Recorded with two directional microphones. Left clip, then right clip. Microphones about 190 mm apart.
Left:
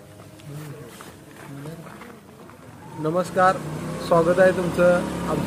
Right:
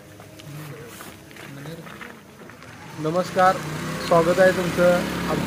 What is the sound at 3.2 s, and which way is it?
Speech, 10° left (ahead or behind).